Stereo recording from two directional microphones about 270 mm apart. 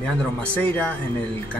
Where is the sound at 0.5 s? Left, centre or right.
Centre.